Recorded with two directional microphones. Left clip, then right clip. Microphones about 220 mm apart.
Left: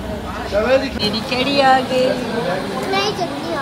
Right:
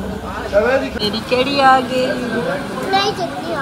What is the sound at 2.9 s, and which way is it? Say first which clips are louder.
Speech: right 4 dB; 40° left (ahead or behind).